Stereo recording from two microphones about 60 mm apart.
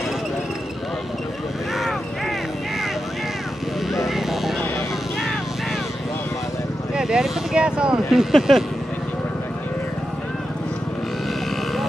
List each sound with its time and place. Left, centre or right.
1.8 s vehicle: centre
3.9 s a sound: centre
7.0 s speech: centre
8.1 s speech: centre